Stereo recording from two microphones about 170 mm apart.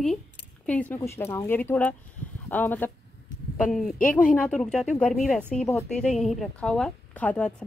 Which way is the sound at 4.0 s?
55° left (ahead or behind).